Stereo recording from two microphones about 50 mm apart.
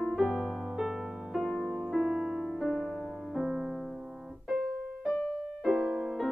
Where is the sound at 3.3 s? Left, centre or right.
Centre.